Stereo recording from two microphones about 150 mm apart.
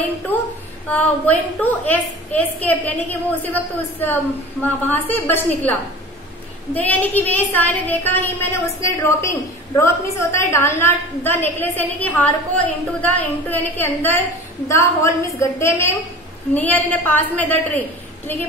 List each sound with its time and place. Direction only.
0.8 s a woman's voice: 10° left (ahead or behind)